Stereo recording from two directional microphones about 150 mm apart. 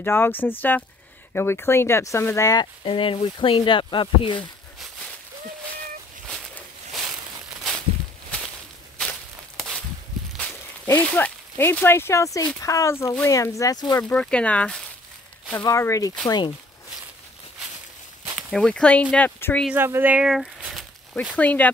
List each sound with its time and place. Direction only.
0.0 s speech: 15° left (ahead or behind); by 4.4 s 30° left (ahead or behind)
6.2 s a sound: 5° left (ahead or behind)
10.9 s speech: 10° left (ahead or behind)
14.0 s speech: 5° left (ahead or behind)
15.6 s speech: 20° left (ahead or behind)
18.5 s speech: 5° left (ahead or behind)
19.7 s a sound: 15° right (ahead or behind)
21.4 s speech: 10° left (ahead or behind)